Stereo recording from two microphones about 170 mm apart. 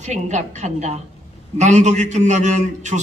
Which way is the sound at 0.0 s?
45° right (ahead or behind).